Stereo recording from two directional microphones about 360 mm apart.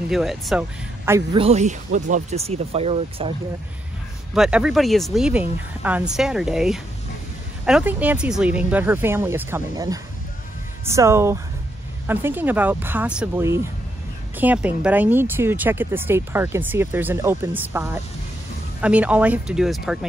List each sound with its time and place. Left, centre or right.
0.1 s speech: centre
4.3 s speech: centre